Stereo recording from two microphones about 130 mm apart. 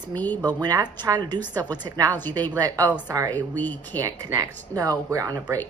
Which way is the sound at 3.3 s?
15° left (ahead or behind).